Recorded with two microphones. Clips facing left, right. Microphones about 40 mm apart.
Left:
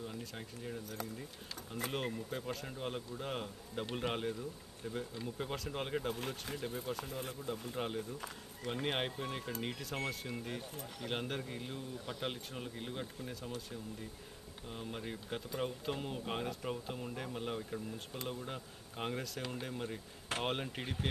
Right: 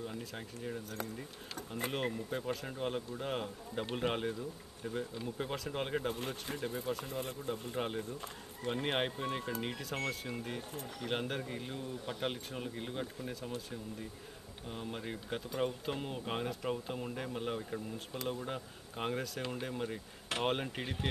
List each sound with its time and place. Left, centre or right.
0.0 s speech: centre
1.9 s speech: centre
6.1 s speech: right
7.7 s speech: centre
14.7 s speech: centre
20.8 s speech: right